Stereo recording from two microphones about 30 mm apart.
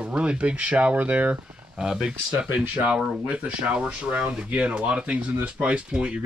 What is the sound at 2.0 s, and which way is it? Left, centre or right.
Speech, right.